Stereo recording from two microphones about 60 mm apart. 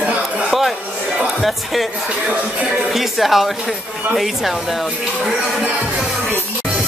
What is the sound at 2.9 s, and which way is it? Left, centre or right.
A woman's voice, centre.